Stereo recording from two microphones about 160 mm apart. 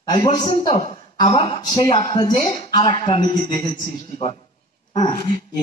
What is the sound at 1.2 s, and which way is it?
A man's voice, 25° left (ahead or behind).